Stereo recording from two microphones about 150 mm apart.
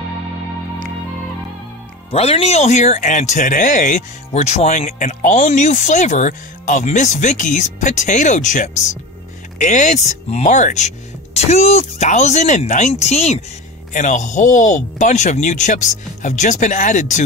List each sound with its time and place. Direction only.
2.0 s speech: 40° left (ahead or behind); by 17.2 s 55° left (ahead or behind)